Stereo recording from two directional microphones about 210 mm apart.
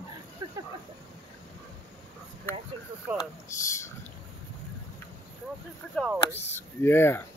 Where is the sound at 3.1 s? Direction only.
15° left (ahead or behind).